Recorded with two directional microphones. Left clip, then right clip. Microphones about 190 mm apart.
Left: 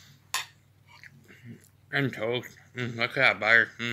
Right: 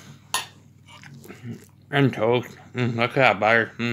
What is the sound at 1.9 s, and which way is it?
Speech, 5° right (ahead or behind).